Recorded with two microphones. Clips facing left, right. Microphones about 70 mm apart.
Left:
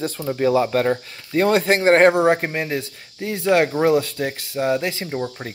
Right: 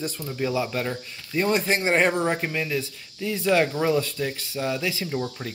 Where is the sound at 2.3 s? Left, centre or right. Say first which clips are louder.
Left 5 dB; left.